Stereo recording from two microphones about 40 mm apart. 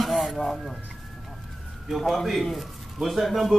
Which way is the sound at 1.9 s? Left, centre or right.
Centre.